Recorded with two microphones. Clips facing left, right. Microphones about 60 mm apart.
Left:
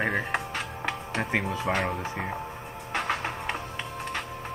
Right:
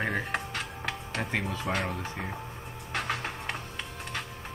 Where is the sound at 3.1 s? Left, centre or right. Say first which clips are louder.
Left 4 dB; left.